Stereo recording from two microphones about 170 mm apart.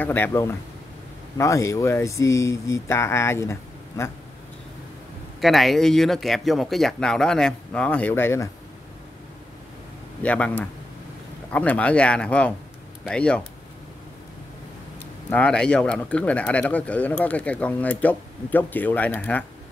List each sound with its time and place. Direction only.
0.0 s speech: 10° left (ahead or behind)
5.4 s speech: centre (ahead or behind)
10.2 s speech: 10° left (ahead or behind)
15.2 s speech: 10° left (ahead or behind)